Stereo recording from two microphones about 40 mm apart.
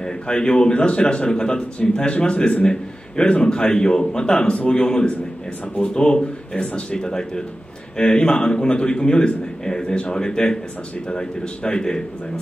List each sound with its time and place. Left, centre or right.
0.0 s a man's voice: left